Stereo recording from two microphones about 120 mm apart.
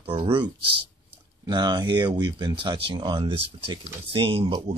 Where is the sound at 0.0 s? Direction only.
50° right (ahead or behind).